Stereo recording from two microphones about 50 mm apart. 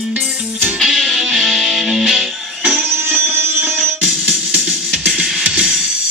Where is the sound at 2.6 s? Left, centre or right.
Right.